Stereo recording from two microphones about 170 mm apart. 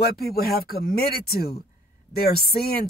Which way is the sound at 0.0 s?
65° left (ahead or behind).